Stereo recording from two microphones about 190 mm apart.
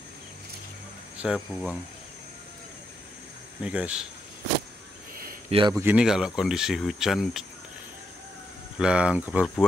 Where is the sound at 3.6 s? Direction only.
5° right (ahead or behind).